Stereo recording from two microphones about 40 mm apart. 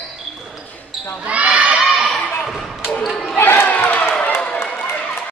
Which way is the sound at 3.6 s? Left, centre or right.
Left.